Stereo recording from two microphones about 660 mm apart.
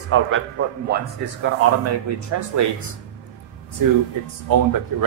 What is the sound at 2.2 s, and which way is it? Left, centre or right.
Speech, right.